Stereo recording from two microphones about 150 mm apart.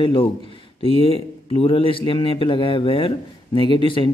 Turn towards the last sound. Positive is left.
turn(degrees=35)  # may be behind; listen again after turning